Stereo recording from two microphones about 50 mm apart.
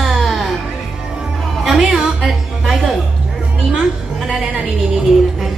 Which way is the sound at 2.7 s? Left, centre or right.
Centre.